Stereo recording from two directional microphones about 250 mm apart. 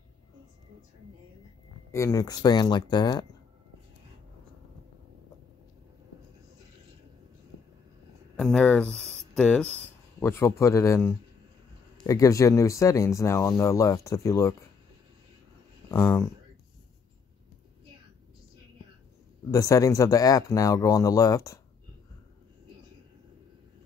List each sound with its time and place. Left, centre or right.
1.9 s speech: centre
8.4 s speech: centre
9.0 s a sound: right
9.3 s speech: centre
15.9 s speech: centre
19.5 s speech: centre